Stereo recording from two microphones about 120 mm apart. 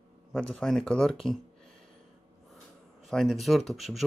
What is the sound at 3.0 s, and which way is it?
Speech, centre (ahead or behind).